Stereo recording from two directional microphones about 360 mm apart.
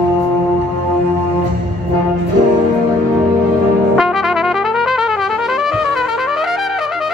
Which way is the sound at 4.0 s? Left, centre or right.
Centre.